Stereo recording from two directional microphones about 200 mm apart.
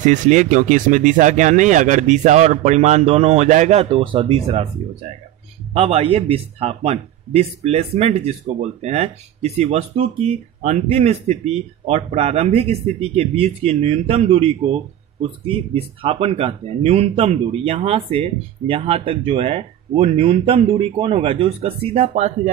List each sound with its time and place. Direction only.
0.0 s a man's voice: 40° right (ahead or behind)
5.7 s a man's voice: 30° right (ahead or behind)